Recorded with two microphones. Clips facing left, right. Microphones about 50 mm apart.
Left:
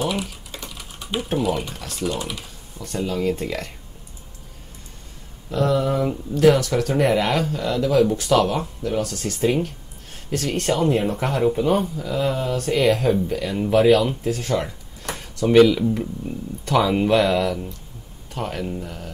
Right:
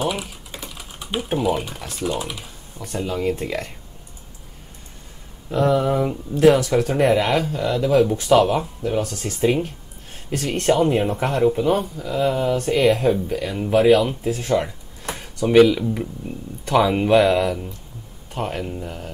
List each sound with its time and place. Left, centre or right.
0.0 s speech: centre
5.5 s speech: centre
7.1 s speech: centre